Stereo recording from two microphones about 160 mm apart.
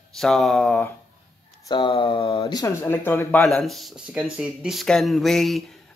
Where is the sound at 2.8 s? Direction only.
15° left (ahead or behind).